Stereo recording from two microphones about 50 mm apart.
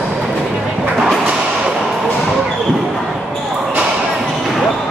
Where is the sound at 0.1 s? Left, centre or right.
Centre.